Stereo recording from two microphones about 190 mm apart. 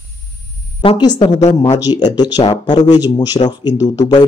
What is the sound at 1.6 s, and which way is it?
Speech, 20° left (ahead or behind).